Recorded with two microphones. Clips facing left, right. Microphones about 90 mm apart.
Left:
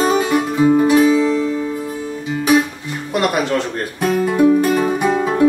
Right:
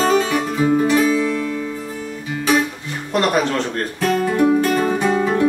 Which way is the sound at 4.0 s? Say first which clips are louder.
Left 2 dB; 15° left (ahead or behind).